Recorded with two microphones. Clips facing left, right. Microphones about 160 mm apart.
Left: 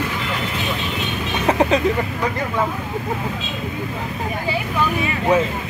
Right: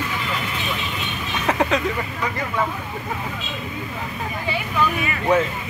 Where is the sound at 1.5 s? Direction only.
20° left (ahead or behind).